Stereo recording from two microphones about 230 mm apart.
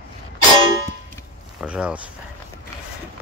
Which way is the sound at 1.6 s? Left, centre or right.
Centre.